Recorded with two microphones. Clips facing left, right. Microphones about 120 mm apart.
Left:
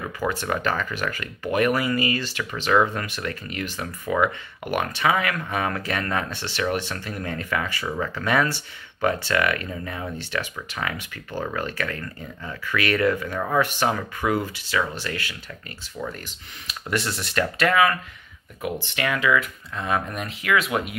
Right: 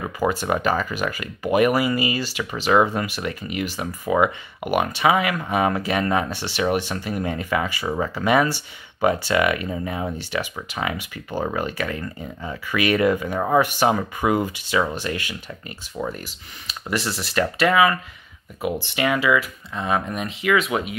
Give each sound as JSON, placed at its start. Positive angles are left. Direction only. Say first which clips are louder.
{"t": 0.2, "sound": "speech", "louder": "right 4 dB", "side_deg": -15}
{"t": 16.6, "sound": "speech", "louder": "right 1 dB", "side_deg": 0}